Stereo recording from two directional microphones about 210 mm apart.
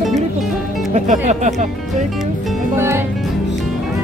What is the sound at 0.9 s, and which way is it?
Speech, 35° right (ahead or behind).